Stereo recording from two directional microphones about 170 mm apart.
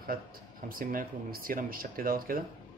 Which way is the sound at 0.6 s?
55° right (ahead or behind).